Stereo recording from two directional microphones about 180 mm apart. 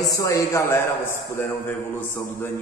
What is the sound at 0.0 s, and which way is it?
A man's voice, 20° left (ahead or behind).